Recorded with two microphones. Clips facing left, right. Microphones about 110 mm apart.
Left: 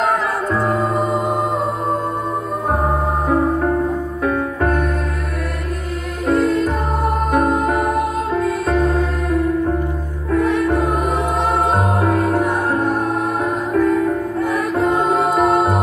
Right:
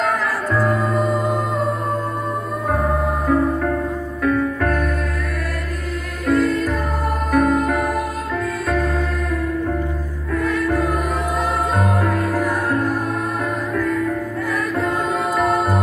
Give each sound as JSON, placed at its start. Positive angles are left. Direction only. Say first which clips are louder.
{"t": 0.5, "sound": "music", "louder": "even", "side_deg": 25}
{"t": 1.0, "sound": "music", "louder": "left 1 dB", "side_deg": 0}
{"t": 2.7, "sound": "music", "louder": "left 1 dB", "side_deg": 30}
{"t": 6.2, "sound": "music", "louder": "left 2 dB", "side_deg": 30}